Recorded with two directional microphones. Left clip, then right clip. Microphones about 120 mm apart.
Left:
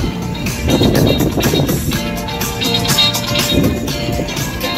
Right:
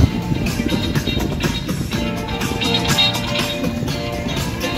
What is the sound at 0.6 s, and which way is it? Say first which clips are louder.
Music: left 13 dB; 40° left (ahead or behind).